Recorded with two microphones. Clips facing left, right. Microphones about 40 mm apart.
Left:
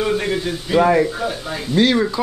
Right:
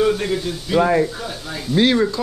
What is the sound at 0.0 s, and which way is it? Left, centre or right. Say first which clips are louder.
A man's voice: right 1 dB; centre.